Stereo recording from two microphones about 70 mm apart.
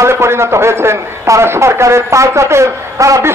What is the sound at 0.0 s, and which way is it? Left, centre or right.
A man's voice, right.